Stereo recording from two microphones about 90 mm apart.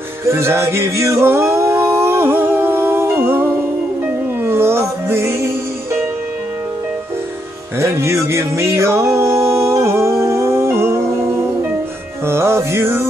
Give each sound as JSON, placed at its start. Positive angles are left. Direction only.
{"t": 0.3, "sound": "male singing", "side_deg": -30}
{"t": 4.4, "sound": "music", "side_deg": -25}
{"t": 7.8, "sound": "music", "side_deg": -30}
{"t": 12.3, "sound": "music", "side_deg": -30}